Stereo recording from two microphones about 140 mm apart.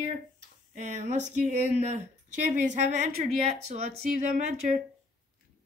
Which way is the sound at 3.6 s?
50° right (ahead or behind).